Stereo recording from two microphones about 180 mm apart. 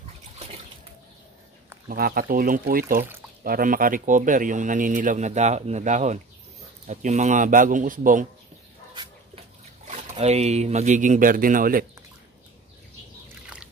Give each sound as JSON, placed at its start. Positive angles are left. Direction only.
{"t": 1.9, "sound": "speech", "side_deg": -55}
{"t": 8.9, "sound": "a sound", "side_deg": -25}
{"t": 10.1, "sound": "speech", "side_deg": -35}